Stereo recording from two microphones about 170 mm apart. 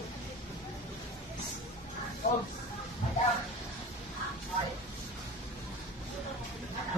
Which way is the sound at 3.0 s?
45° left (ahead or behind).